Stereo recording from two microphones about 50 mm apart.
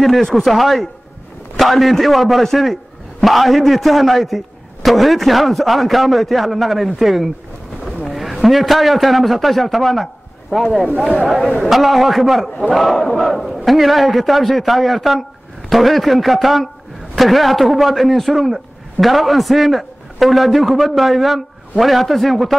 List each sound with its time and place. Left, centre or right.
0.0 s a man's voice: centre